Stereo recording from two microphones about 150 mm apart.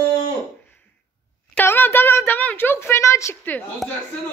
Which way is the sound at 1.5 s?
15° left (ahead or behind).